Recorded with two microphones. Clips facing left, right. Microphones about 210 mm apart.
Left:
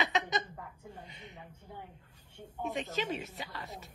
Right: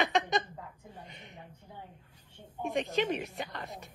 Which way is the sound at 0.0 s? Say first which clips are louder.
Right 4 dB; 50° right (ahead or behind).